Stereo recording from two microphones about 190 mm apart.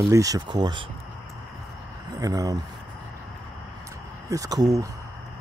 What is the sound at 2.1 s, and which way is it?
Speech, 20° right (ahead or behind).